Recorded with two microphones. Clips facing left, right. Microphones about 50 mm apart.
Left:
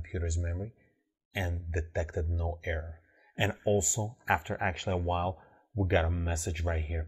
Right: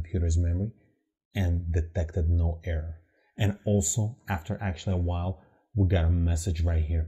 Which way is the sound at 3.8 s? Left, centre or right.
Left.